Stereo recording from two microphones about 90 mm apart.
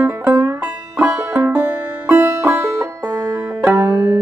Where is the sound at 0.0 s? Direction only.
30° right (ahead or behind).